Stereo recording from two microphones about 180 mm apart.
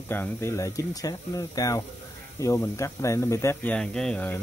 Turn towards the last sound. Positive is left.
turn(degrees=10)  # may be behind; listen again after turning